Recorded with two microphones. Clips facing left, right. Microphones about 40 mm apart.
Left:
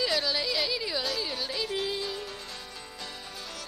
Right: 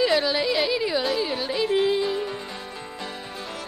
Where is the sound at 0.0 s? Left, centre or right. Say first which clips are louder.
Right 7 dB; right.